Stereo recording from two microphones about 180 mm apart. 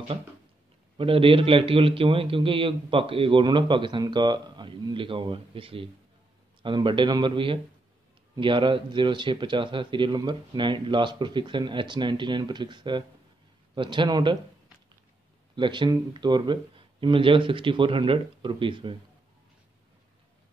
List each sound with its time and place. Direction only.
0.9 s a man's voice: 30° right (ahead or behind)
15.5 s a man's voice: 25° right (ahead or behind)